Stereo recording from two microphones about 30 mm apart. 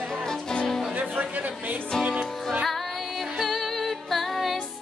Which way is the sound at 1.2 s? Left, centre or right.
Right.